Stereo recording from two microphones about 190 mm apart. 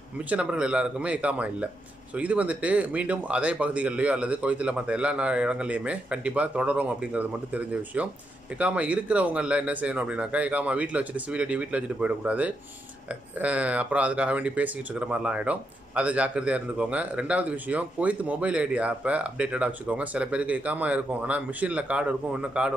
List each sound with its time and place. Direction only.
0.3 s speech: 5° right (ahead or behind)